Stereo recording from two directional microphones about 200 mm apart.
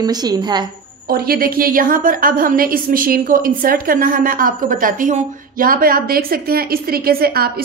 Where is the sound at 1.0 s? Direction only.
50° right (ahead or behind).